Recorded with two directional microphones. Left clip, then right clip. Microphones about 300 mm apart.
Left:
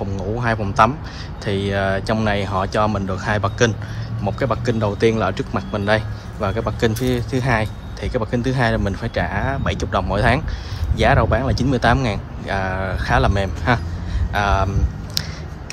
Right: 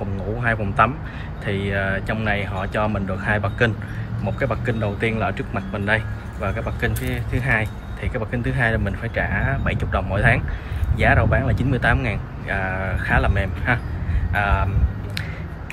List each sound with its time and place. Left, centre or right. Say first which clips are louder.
0.4 s speech: left 3 dB; centre